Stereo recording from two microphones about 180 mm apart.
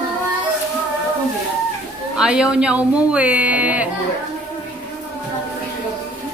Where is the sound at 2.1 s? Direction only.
5° right (ahead or behind).